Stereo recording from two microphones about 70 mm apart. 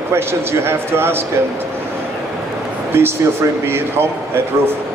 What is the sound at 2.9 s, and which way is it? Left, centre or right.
A man's voice, right.